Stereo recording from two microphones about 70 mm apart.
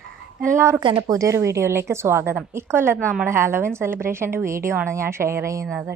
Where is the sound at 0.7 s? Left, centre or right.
Right.